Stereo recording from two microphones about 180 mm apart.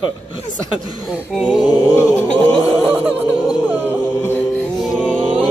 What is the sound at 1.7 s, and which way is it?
Chant, 15° left (ahead or behind).